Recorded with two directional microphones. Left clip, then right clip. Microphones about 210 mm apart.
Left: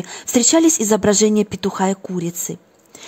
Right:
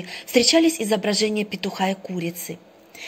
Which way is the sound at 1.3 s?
35° left (ahead or behind).